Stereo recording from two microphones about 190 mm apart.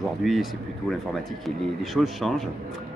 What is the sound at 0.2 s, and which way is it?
Speech, centre (ahead or behind).